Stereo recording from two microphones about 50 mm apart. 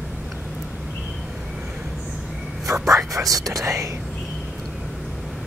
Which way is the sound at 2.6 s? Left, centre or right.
Right.